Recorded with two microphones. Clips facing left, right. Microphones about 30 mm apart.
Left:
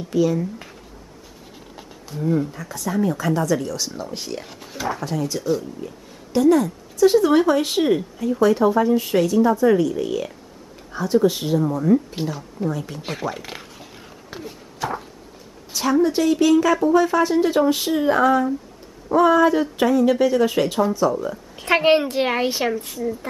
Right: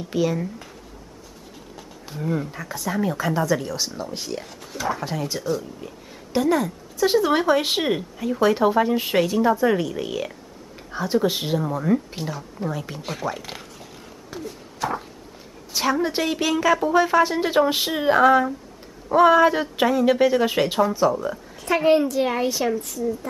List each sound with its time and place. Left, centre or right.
0.1 s speech: centre
2.0 s speech: centre
3.9 s speech: centre
5.0 s speech: centre
12.3 s speech: centre
13.0 s a sound: centre
14.8 s a sound: centre
15.7 s speech: centre
21.5 s speech: left
22.3 s a woman's voice: left